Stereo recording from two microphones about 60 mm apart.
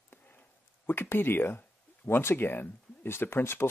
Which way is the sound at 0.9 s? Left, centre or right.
Left.